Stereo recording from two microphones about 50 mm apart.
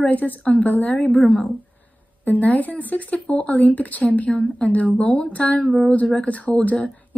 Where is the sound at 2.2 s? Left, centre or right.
Left; by 6.0 s centre.